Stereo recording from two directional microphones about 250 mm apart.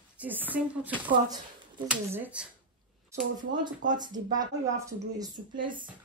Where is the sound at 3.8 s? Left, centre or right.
Right.